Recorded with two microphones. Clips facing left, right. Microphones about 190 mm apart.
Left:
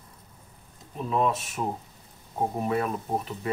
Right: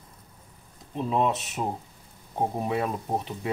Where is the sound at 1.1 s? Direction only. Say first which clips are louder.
Even; 20° right (ahead or behind).